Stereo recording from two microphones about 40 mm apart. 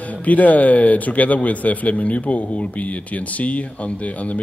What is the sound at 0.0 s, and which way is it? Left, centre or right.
Speech, left.